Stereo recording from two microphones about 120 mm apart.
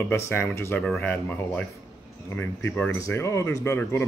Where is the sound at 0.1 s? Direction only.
20° left (ahead or behind).